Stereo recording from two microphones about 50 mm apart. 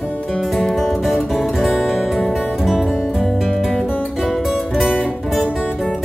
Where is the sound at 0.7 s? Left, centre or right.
Centre.